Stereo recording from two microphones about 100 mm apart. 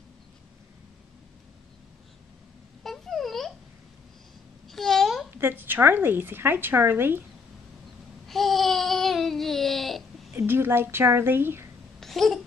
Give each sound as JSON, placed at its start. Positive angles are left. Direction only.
{"t": 2.8, "sound": "a sound", "side_deg": 0}
{"t": 4.6, "sound": "babbling", "side_deg": 5}
{"t": 5.4, "sound": "a woman's voice", "side_deg": -20}
{"t": 8.3, "sound": "babbling", "side_deg": 0}
{"t": 10.3, "sound": "a woman's voice", "side_deg": -20}
{"t": 12.0, "sound": "babbling", "side_deg": 5}